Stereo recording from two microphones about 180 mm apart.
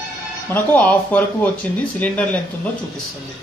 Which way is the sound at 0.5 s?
10° left (ahead or behind).